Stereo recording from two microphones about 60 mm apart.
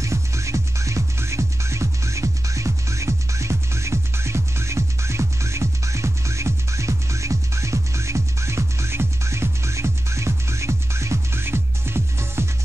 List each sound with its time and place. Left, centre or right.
0.0 s music: right